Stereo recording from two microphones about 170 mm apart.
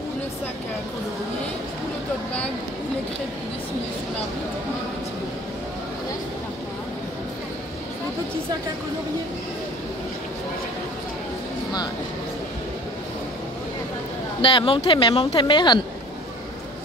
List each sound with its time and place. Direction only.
14.4 s speech: 30° left (ahead or behind)